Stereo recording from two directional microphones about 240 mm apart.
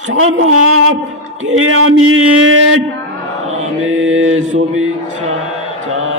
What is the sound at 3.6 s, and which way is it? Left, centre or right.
Chant, right.